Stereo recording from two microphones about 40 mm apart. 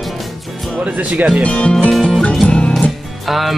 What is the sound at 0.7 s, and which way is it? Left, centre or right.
Speech, right.